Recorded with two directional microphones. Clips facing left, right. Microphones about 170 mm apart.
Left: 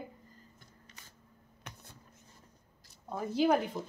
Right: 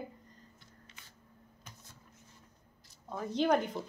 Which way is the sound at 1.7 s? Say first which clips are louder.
Left 6 dB; 70° left (ahead or behind).